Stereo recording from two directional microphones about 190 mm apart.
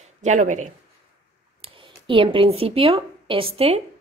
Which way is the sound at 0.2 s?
40° right (ahead or behind).